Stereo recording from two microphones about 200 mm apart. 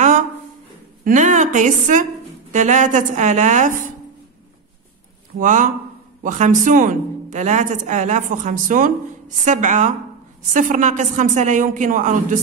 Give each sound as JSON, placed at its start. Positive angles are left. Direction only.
{"t": 1.0, "sound": "a woman's voice", "side_deg": -40}
{"t": 5.4, "sound": "a woman's voice", "side_deg": -40}